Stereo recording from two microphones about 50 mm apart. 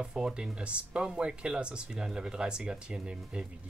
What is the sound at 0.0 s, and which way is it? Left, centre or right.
Speech, centre.